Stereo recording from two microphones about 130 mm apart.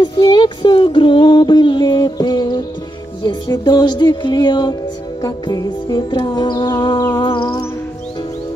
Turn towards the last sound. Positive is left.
turn(degrees=40)  # may be behind; listen again after turning